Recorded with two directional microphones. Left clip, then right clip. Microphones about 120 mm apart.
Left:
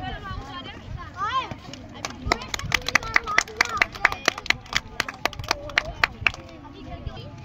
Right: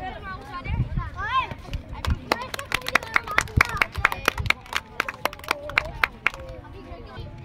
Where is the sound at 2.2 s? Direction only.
15° right (ahead or behind).